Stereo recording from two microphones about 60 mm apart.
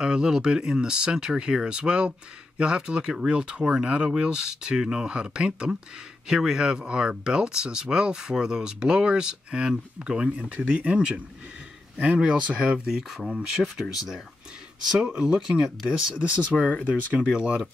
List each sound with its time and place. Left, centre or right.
0.0 s speech: centre
16.5 s speech: centre
17.3 s speech: centre